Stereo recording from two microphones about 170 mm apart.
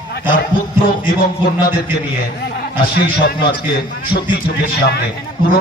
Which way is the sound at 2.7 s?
60° left (ahead or behind).